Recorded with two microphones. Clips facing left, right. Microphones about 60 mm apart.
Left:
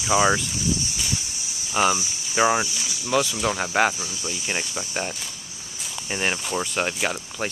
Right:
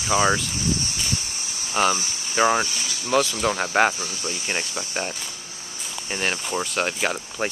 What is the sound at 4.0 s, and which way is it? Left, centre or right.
Speech, right.